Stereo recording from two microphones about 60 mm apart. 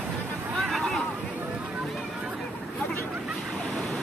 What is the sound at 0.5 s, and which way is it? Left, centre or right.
Vehicle, centre.